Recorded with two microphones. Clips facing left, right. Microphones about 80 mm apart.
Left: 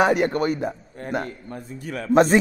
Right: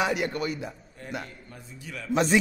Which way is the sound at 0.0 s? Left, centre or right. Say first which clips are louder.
Left 8 dB; left.